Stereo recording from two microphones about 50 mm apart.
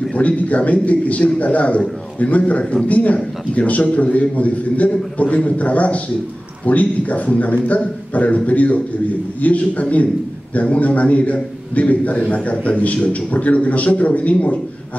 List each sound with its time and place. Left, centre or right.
0.1 s a man's voice: left
2.6 s a man's voice: centre
2.9 s a man's voice: left